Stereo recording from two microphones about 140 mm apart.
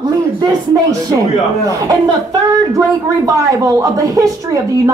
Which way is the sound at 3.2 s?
25° right (ahead or behind).